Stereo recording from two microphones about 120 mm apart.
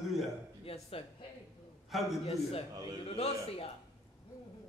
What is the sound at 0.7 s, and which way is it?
Speech, 55° left (ahead or behind).